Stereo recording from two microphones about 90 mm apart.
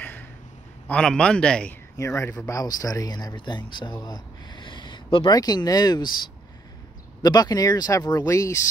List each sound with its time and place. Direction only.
0.0 s a sound: 20° left (ahead or behind)
0.8 s a man's voice: 10° left (ahead or behind)
2.0 s speech: 35° left (ahead or behind); by 3.9 s 60° left (ahead or behind)
4.0 s a sound: 55° left (ahead or behind)
5.3 s speech: 45° left (ahead or behind)
7.2 s speech: 45° left (ahead or behind)